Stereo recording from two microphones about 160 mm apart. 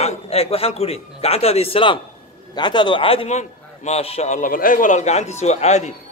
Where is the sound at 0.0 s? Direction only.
40° left (ahead or behind).